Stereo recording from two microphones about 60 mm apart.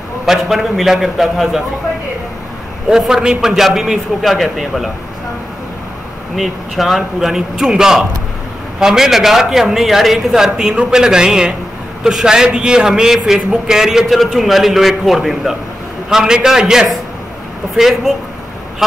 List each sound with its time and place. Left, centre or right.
0.3 s a man's voice: centre
2.9 s a man's voice: centre
6.3 s a man's voice: centre